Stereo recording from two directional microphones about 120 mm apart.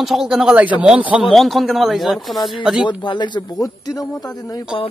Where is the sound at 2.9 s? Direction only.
40° left (ahead or behind).